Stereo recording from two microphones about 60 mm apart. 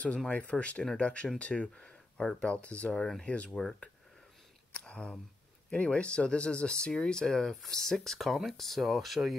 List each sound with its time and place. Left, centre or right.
0.3 s speech: left
4.7 s a sound: centre
5.7 s speech: centre